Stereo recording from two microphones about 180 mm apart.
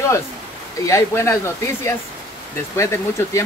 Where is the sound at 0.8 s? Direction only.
15° left (ahead or behind).